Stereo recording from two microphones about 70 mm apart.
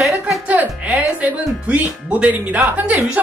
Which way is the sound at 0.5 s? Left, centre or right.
Right.